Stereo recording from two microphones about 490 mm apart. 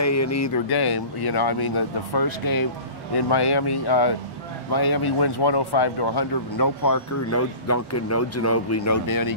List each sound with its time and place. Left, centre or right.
0.0 s speech: left
6.5 s speech: left